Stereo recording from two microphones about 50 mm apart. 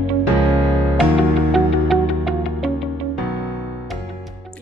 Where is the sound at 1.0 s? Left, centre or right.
Centre.